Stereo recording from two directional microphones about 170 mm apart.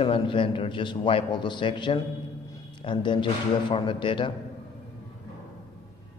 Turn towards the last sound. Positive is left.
turn(degrees=30)  # may be behind; listen again after turning